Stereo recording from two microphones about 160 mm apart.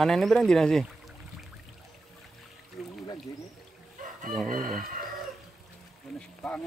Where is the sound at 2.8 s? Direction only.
Centre (ahead or behind).